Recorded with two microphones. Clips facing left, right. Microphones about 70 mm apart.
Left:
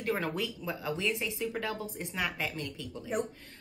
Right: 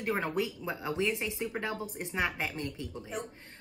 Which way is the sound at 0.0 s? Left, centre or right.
Right.